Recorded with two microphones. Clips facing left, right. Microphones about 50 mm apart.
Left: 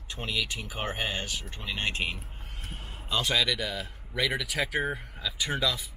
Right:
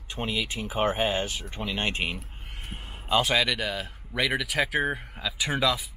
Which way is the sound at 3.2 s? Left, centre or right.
Centre.